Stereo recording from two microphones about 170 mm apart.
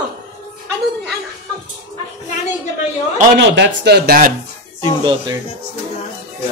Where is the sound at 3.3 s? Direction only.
90° right; by 4.3 s 65° right (ahead or behind).